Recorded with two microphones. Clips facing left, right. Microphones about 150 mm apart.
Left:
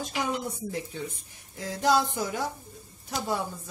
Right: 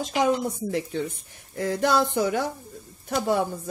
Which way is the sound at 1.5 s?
60° right (ahead or behind).